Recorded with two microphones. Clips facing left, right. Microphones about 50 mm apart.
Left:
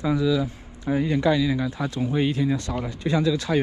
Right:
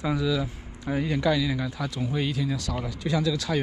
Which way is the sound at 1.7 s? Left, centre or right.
Left.